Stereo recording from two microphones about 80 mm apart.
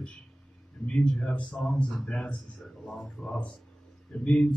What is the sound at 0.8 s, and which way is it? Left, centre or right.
Speech, centre.